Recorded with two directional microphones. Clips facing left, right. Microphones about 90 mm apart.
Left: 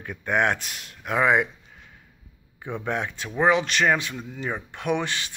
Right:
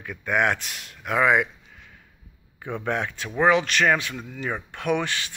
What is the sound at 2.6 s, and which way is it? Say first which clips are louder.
Speech: right 1 dB; 15° left (ahead or behind).